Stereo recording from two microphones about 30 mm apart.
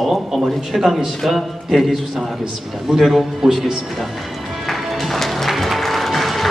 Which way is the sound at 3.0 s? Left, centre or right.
Centre.